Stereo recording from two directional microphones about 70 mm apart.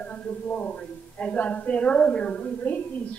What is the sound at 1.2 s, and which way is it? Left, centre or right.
A woman's voice, centre.